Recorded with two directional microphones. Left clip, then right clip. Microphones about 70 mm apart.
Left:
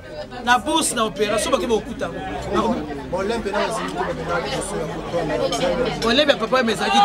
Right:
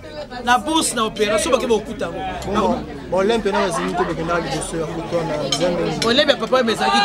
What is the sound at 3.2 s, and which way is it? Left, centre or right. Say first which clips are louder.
Speech: right 5 dB; right.